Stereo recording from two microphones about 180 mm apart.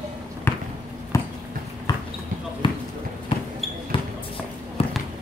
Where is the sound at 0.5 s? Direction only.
15° left (ahead or behind).